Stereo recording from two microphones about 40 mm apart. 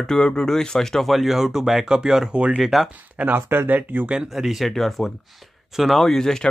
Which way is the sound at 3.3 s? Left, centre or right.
Right.